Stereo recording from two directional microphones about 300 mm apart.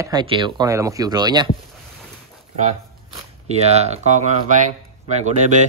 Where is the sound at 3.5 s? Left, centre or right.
Right.